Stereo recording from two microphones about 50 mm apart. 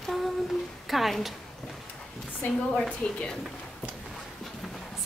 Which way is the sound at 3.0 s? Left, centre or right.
Left.